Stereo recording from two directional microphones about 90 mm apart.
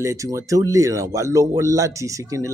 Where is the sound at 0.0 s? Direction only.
35° right (ahead or behind).